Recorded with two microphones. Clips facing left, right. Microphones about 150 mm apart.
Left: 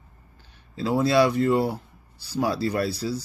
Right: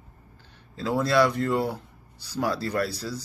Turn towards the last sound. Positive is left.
turn(degrees=10)  # may be behind; listen again after turning